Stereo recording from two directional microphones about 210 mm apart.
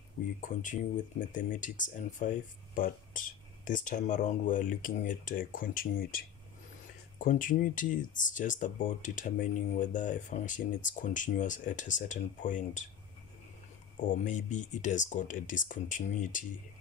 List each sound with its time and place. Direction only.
0.4 s speech: 40° left (ahead or behind)
7.2 s speech: 40° left (ahead or behind)
14.0 s speech: 35° left (ahead or behind)